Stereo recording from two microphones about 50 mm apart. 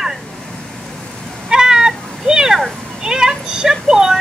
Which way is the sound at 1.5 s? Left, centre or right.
Centre.